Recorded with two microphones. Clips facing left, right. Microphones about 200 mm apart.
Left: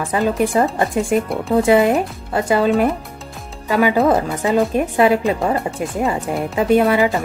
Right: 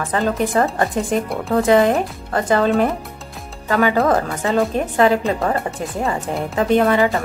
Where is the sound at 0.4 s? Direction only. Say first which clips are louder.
Left 2 dB; 10° left (ahead or behind).